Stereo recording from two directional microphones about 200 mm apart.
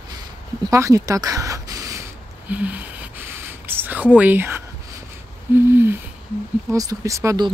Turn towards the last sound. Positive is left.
turn(degrees=-20)  # may be behind; listen again after turning